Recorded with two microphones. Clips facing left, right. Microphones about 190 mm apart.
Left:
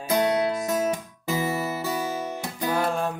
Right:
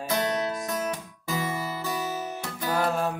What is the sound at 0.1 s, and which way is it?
Music, 20° left (ahead or behind).